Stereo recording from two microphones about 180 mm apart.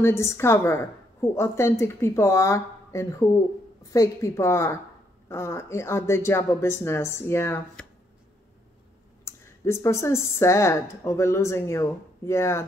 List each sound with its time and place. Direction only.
0.0 s a woman's voice: 15° left (ahead or behind)
9.2 s a woman's voice: 15° left (ahead or behind)